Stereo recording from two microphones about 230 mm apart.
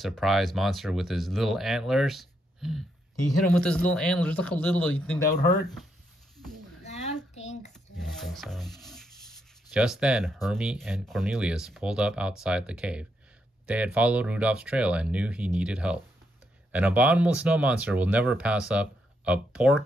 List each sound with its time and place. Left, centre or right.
0.0 s speech: centre
7.3 s typing: left
7.7 s rub: centre
13.7 s speech: centre